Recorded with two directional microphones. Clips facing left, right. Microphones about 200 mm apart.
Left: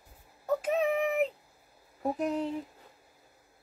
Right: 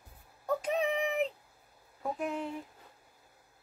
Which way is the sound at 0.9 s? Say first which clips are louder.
Left 3 dB; 45° left (ahead or behind).